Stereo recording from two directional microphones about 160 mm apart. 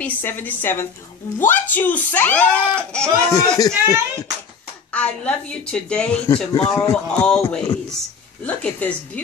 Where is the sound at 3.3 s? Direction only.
20° left (ahead or behind).